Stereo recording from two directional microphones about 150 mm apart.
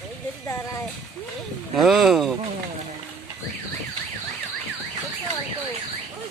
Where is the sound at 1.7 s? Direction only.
Centre (ahead or behind).